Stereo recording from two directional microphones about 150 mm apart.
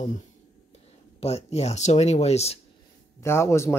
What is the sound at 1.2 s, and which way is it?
Speech, 45° left (ahead or behind).